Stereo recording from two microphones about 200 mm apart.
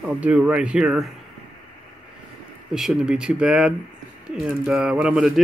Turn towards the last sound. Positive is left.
turn(degrees=-5)  # may be behind; listen again after turning